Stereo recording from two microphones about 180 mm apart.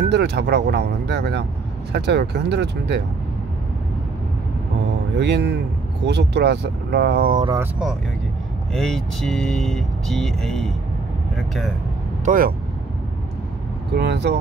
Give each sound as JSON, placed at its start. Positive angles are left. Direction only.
{"t": 0.1, "sound": "speech", "side_deg": -70}
{"t": 5.1, "sound": "speech", "side_deg": -70}
{"t": 8.7, "sound": "speech", "side_deg": 0}
{"t": 12.3, "sound": "speech", "side_deg": -50}
{"t": 13.9, "sound": "speech", "side_deg": -70}